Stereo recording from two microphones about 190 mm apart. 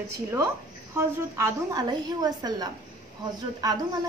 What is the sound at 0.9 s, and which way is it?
A woman's voice, 15° right (ahead or behind).